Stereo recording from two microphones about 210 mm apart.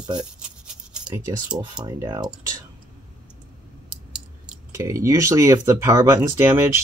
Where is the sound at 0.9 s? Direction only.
10° right (ahead or behind).